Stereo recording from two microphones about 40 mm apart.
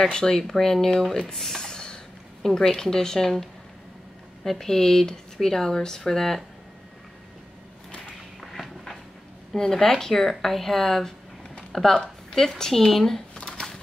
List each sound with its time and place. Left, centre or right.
0.0 s speech: centre
4.5 s speech: centre
8.4 s a sound: centre
9.5 s speech: centre
13.3 s shuffling cards: left